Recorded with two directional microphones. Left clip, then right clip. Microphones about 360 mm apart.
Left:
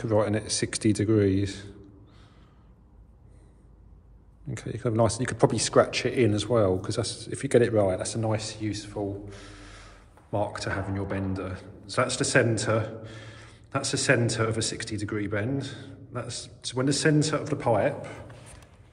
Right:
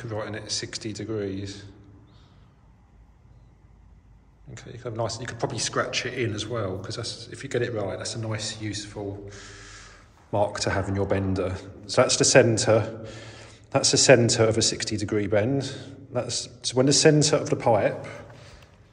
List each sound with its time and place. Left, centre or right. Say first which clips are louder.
0.0 s a man's voice: left 8 dB; centre
4.6 s speech: left 6 dB; centre
10.3 s a man's voice: right 5 dB; centre